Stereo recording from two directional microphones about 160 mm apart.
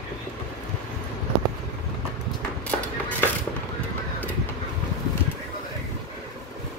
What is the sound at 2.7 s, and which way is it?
Music, 10° left (ahead or behind).